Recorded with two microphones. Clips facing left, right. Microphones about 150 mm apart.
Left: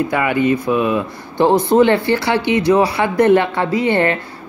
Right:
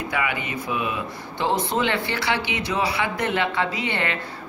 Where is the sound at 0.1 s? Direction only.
50° left (ahead or behind).